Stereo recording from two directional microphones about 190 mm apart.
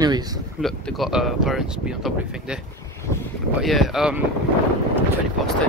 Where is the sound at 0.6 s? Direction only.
Centre (ahead or behind).